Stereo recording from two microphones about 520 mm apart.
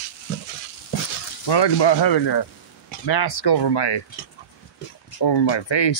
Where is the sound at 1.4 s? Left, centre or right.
Left.